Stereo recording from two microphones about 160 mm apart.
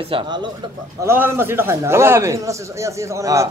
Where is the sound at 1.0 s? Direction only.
15° right (ahead or behind).